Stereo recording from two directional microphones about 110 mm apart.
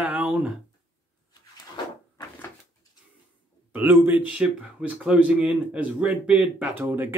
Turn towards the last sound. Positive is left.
turn(degrees=-20)  # may be behind; listen again after turning